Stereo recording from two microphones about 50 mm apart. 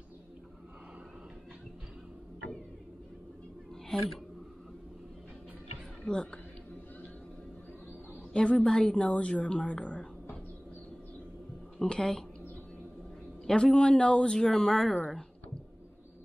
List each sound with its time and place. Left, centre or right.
6.0 s a woman's voice: centre
8.3 s a woman's voice: centre
11.8 s speech: centre
13.5 s speech: centre